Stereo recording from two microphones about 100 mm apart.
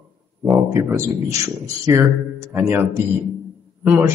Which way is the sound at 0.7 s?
30° right (ahead or behind).